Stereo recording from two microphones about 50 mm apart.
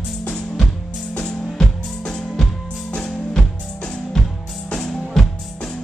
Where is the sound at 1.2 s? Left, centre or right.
Centre.